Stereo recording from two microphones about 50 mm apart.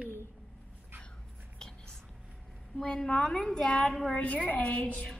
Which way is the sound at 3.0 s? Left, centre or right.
Left.